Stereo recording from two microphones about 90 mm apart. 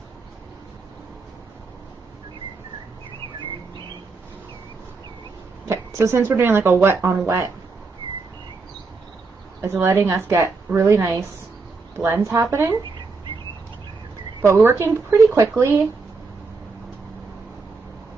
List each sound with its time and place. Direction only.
5.7 s a woman's voice: 30° right (ahead or behind)
9.6 s a woman's voice: 30° right (ahead or behind)
14.4 s a woman's voice: 30° right (ahead or behind)